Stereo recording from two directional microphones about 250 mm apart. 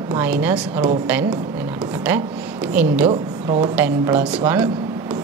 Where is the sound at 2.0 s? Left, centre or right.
Centre.